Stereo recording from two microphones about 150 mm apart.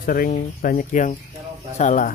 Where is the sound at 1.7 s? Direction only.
55° left (ahead or behind).